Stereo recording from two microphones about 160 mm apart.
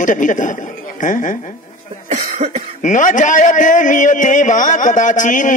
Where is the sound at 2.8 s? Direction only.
50° left (ahead or behind).